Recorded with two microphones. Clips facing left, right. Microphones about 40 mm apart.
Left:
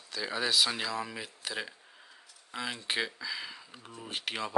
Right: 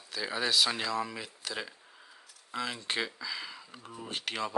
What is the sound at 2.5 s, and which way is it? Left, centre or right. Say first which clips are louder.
Speech: right 1 dB; centre.